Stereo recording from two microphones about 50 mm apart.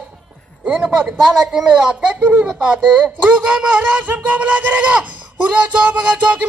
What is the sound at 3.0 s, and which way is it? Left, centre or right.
Speech, right.